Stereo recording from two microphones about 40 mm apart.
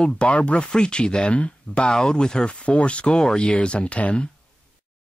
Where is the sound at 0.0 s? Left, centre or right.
Left.